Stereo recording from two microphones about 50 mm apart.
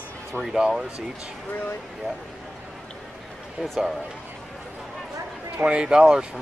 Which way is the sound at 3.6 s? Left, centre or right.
Centre.